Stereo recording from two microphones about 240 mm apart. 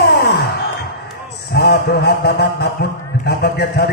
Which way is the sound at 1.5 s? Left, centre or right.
Left.